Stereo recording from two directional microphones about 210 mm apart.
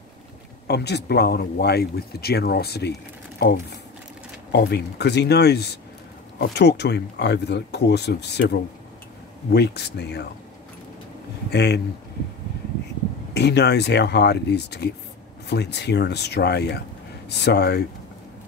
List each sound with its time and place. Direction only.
0.7 s speech: 50° left (ahead or behind)
11.5 s speech: 50° left (ahead or behind)
13.3 s speech: 50° left (ahead or behind)